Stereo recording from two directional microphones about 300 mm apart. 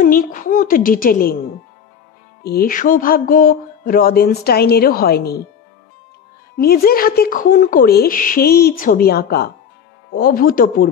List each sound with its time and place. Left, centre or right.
0.0 s speech: left
2.4 s speech: left
6.5 s speech: left